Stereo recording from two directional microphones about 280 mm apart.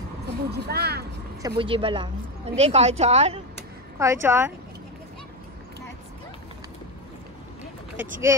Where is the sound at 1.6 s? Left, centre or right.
Centre.